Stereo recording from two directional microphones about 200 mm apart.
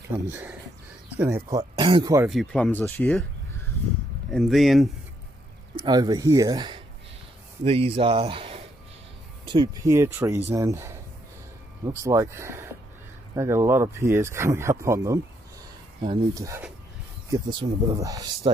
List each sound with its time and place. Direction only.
0.3 s speech: 10° right (ahead or behind)
1.6 s speech: 25° right (ahead or behind)
2.2 s speech: centre (ahead or behind)
5.9 s speech: 20° right (ahead or behind)